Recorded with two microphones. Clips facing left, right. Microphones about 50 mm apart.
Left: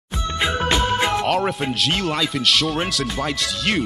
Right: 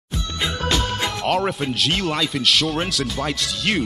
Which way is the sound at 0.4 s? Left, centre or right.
Left.